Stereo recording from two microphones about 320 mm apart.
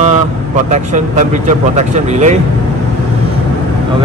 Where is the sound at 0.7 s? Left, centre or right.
Right.